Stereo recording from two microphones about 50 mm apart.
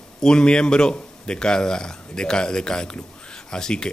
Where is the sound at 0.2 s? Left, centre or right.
Centre.